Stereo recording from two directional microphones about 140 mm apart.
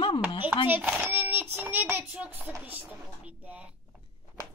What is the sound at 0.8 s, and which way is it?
Speech, 15° right (ahead or behind).